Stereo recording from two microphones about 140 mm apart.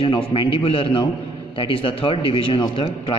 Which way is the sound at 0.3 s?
40° left (ahead or behind).